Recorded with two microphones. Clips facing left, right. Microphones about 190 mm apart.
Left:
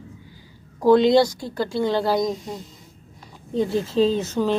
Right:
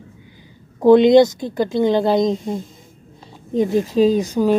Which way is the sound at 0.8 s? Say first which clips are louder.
Right 5 dB; 20° right (ahead or behind).